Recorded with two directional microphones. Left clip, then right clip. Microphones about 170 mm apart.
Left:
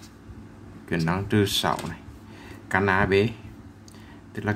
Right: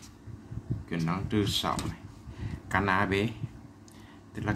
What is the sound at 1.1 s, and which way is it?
Speech, 20° left (ahead or behind).